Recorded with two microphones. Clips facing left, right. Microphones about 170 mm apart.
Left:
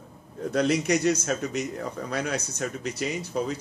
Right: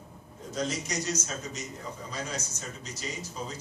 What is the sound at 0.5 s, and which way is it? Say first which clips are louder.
A man's voice: left 10 dB; 65° left (ahead or behind).